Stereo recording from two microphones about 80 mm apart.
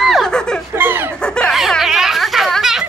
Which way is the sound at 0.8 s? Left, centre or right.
Right.